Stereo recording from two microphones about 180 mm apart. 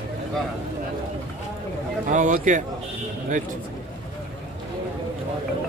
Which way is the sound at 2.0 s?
45° right (ahead or behind).